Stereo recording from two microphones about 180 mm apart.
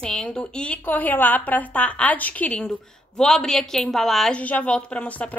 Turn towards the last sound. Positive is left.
turn(degrees=5)  # may be behind; listen again after turning